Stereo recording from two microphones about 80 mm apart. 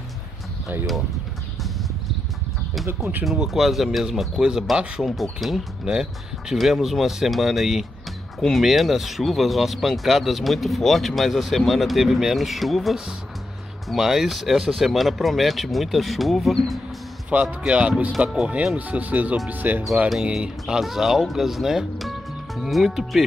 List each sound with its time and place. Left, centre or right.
3.3 s speech: centre
17.3 s speech: centre
20.1 s speech: centre